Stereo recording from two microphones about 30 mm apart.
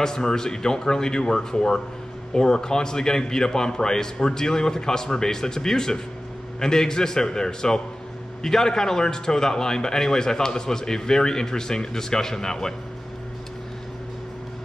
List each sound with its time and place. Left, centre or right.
0.0 s a man's voice: centre